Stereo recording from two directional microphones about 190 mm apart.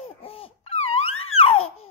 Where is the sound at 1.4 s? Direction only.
30° left (ahead or behind).